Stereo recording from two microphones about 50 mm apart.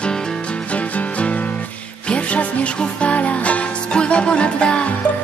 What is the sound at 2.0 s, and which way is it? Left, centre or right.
Music, left.